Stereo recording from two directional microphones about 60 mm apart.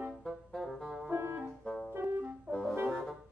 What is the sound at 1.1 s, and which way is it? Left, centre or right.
Music, right.